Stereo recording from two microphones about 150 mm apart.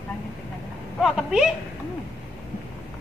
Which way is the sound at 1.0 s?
5° right (ahead or behind).